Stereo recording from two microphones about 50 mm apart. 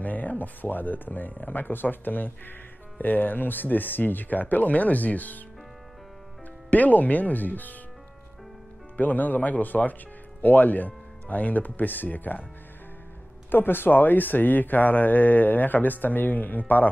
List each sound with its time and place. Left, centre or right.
0.0 s speech: left
6.7 s speech: left
8.9 s speech: left
13.5 s speech: left